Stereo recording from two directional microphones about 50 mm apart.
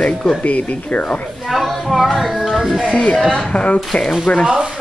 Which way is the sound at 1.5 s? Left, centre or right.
Centre.